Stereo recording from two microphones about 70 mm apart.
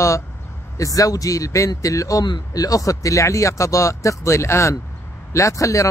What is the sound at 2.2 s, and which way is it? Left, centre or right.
A man's voice, left.